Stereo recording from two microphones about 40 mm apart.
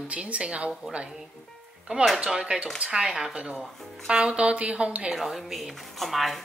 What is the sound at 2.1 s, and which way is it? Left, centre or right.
A woman's voice, centre.